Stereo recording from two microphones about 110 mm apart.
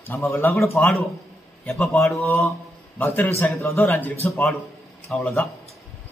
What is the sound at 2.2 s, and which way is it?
A man's voice, 20° left (ahead or behind).